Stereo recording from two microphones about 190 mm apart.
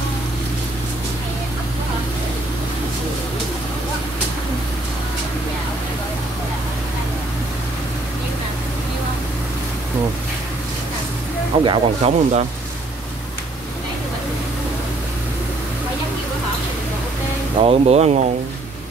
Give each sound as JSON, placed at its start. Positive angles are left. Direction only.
{"t": 11.6, "sound": "speech", "side_deg": -30}
{"t": 17.6, "sound": "speech", "side_deg": -30}